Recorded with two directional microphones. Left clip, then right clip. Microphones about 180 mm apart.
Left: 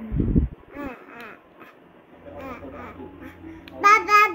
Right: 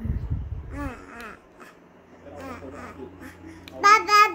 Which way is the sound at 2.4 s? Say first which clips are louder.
Left 1 dB; 20° right (ahead or behind).